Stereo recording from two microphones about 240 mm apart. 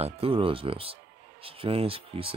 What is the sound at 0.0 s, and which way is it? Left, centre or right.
Speech, right.